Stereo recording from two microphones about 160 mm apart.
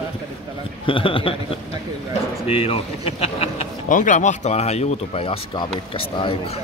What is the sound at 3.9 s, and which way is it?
Speech, 55° left (ahead or behind).